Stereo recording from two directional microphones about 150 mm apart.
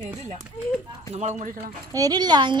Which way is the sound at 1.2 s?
50° right (ahead or behind).